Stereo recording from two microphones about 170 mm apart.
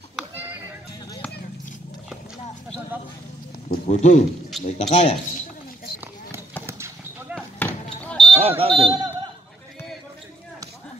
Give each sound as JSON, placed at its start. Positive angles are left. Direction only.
{"t": 0.1, "sound": "a sound", "side_deg": -10}
{"t": 3.8, "sound": "speech", "side_deg": 45}
{"t": 6.6, "sound": "clip-clop", "side_deg": -15}
{"t": 7.3, "sound": "basketball bounce", "side_deg": 10}
{"t": 8.4, "sound": "smoke detector", "side_deg": -35}